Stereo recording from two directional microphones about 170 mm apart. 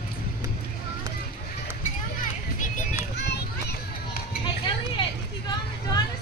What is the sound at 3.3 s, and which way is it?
Music, 70° left (ahead or behind).